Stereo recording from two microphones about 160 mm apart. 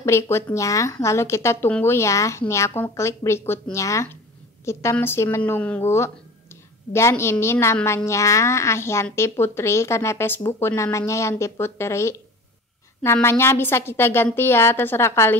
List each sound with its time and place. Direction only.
0.0 s speech: 15° left (ahead or behind)